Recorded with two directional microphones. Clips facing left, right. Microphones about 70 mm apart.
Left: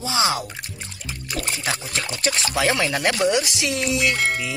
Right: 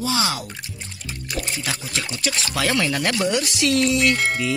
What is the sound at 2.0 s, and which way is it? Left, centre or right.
Speech, left.